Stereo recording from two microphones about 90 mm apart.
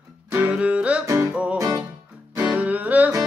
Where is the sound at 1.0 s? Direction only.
35° right (ahead or behind).